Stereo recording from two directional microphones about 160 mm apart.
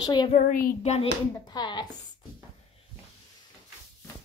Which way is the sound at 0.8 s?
40° left (ahead or behind).